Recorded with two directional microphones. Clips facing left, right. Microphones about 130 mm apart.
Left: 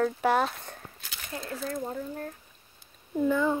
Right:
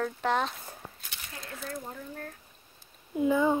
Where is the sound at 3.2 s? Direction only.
15° right (ahead or behind).